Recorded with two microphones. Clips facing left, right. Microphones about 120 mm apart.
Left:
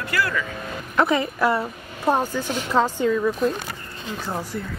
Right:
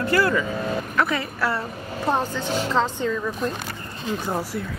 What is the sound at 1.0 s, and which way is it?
A woman's voice, 20° left (ahead or behind).